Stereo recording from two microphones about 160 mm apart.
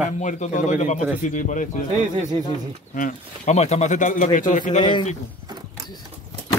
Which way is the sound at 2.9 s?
50° left (ahead or behind).